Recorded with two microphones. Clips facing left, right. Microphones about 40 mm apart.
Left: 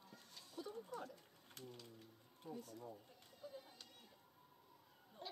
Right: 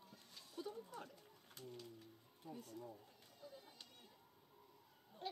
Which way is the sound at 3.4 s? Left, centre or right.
Centre.